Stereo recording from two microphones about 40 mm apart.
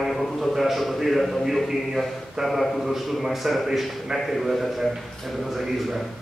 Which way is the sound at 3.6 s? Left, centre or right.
Centre.